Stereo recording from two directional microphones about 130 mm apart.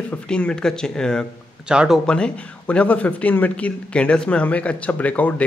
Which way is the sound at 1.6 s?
5° right (ahead or behind).